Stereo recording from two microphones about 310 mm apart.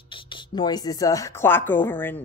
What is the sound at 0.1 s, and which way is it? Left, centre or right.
A woman's voice, centre.